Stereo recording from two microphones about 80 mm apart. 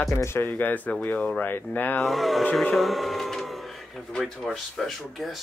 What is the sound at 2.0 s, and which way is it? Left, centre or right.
Speech, centre.